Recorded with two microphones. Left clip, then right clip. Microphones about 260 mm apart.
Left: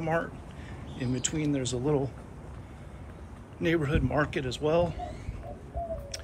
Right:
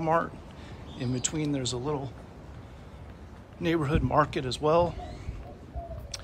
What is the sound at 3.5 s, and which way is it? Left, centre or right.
Speech, centre.